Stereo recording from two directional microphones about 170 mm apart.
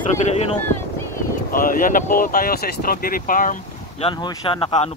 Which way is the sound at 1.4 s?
55° left (ahead or behind).